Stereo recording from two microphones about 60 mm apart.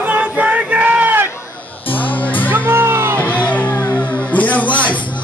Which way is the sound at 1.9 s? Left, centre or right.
Left.